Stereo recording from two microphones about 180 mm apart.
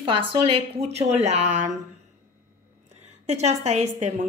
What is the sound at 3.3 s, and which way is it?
Speech, 40° right (ahead or behind).